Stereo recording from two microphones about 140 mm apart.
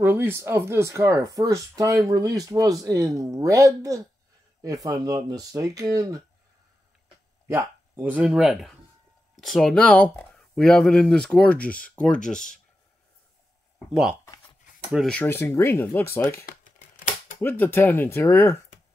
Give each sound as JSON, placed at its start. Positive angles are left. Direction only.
{"t": 0.0, "sound": "speech", "side_deg": -15}
{"t": 7.4, "sound": "speech", "side_deg": -20}
{"t": 15.0, "sound": "speech", "side_deg": 15}
{"t": 16.4, "sound": "a sound", "side_deg": 65}
{"t": 17.4, "sound": "speech", "side_deg": 15}